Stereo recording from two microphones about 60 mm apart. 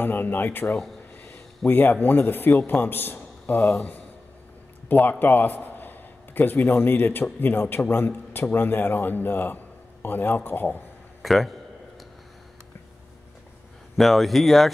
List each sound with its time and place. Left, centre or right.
0.0 s a man's voice: left
4.8 s a man's voice: left
11.2 s speech: centre
13.9 s speech: centre